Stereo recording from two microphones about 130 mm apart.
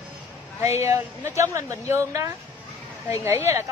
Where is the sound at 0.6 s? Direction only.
20° right (ahead or behind).